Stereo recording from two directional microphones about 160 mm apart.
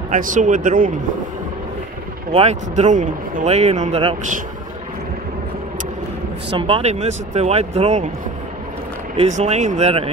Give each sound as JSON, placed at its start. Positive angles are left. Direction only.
{"t": 0.1, "sound": "a man's voice", "side_deg": -55}
{"t": 2.3, "sound": "speech", "side_deg": -45}
{"t": 6.5, "sound": "speech", "side_deg": -35}
{"t": 9.1, "sound": "speech", "side_deg": -40}